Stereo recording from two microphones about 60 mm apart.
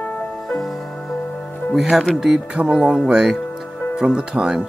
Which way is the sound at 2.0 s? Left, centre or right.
Centre.